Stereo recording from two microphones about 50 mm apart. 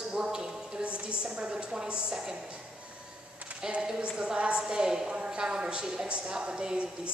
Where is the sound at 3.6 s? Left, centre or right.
Centre.